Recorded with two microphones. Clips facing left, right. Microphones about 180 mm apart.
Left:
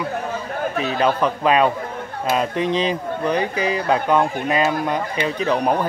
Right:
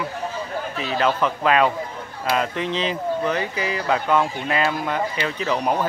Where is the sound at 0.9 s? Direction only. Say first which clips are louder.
Even; 15° left (ahead or behind).